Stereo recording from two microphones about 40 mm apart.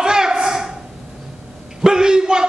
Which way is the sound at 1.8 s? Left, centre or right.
Centre.